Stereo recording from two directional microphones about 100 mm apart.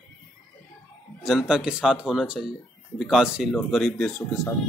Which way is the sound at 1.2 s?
5° right (ahead or behind).